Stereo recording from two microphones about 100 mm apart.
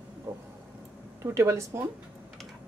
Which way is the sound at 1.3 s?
30° right (ahead or behind).